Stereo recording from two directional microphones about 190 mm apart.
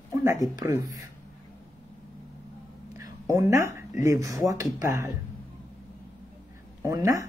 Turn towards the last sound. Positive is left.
turn(degrees=-15)  # may be behind; listen again after turning